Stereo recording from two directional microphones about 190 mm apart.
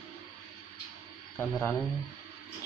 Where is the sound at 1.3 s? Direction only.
10° left (ahead or behind).